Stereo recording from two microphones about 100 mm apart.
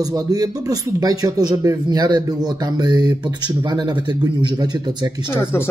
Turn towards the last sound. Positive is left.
turn(degrees=25)  # may be behind; listen again after turning